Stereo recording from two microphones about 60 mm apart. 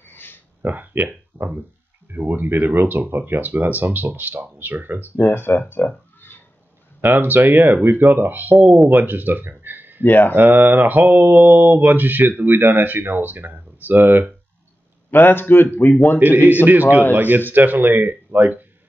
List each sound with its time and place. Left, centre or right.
0.1 s a sound: left
0.6 s speech: right
2.0 s mantra: right
5.1 s speech: left
7.0 s mantra: right
8.8 s speech: right
10.0 s speech: left
10.3 s mantra: right
15.0 s speech: left
16.2 s mantra: right
16.6 s speech: right
17.1 s mantra: right